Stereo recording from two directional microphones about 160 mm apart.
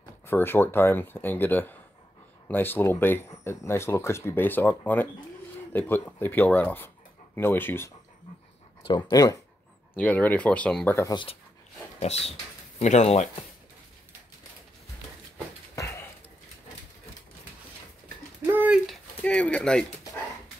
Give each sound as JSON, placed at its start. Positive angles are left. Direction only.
{"t": 0.3, "sound": "speech", "side_deg": 15}
{"t": 8.8, "sound": "speech", "side_deg": 25}
{"t": 9.9, "sound": "speech", "side_deg": 10}
{"t": 12.0, "sound": "speech", "side_deg": 40}
{"t": 15.7, "sound": "dog", "side_deg": 20}
{"t": 18.4, "sound": "a sound", "side_deg": -10}
{"t": 18.9, "sound": "a sound", "side_deg": 5}